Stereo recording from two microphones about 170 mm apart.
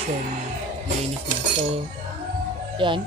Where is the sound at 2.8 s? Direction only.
30° right (ahead or behind).